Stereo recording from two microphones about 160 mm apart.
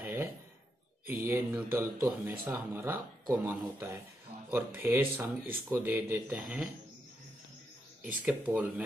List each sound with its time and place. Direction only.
0.0 s a sound: 15° right (ahead or behind)
1.2 s speech: 15° right (ahead or behind)
8.0 s speech: 10° right (ahead or behind)